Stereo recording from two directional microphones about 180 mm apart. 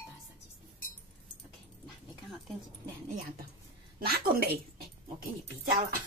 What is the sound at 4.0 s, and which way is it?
Speech, 55° right (ahead or behind).